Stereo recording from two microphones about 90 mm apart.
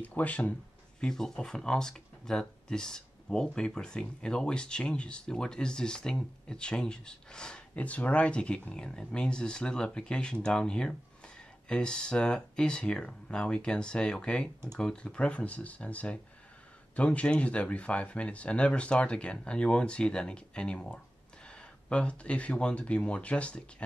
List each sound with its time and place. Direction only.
0.0 s speech: 15° left (ahead or behind)
1.0 s speech: 5° left (ahead or behind)